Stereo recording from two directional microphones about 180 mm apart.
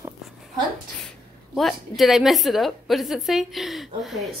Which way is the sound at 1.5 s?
Centre (ahead or behind).